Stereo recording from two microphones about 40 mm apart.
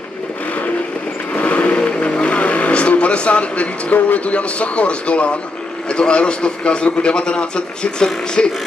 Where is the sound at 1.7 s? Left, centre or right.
Left.